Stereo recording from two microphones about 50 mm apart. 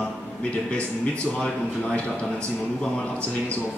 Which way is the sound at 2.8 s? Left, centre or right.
Left.